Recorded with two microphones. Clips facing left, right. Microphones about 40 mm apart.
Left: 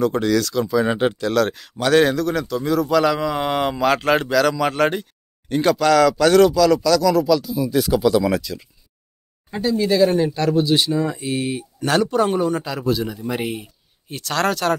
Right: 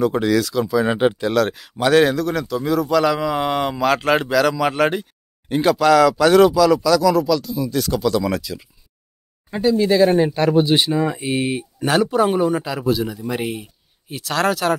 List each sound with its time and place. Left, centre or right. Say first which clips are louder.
0.0 s speech: right 1 dB; centre
0.9 s a man's voice: right 1 dB; centre
9.9 s speech: right 2 dB; right
11.8 s a man's voice: right 1 dB; centre